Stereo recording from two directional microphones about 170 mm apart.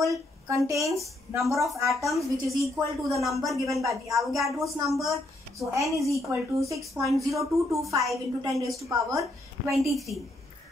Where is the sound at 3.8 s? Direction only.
20° right (ahead or behind).